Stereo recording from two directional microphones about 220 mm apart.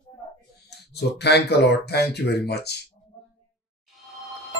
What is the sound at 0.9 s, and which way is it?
Speech, 50° left (ahead or behind).